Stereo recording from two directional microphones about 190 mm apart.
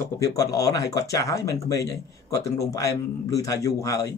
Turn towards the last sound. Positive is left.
turn(degrees=15)  # may be behind; listen again after turning